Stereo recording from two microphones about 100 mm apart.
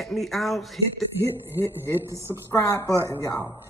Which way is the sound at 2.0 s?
25° right (ahead or behind).